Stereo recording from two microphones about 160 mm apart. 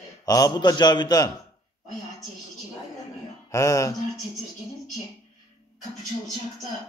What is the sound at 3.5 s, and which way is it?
Speech, 20° left (ahead or behind).